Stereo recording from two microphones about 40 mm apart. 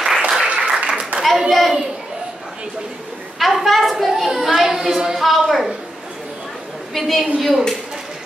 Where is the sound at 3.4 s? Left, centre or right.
Centre.